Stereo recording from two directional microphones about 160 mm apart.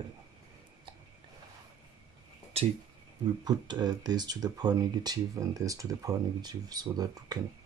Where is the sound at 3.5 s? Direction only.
25° right (ahead or behind).